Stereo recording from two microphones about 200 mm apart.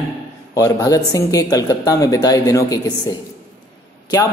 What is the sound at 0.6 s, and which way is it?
Speech, 20° left (ahead or behind).